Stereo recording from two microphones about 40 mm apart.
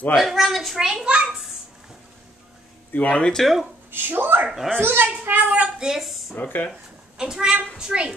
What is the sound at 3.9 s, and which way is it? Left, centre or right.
A child's voice, right.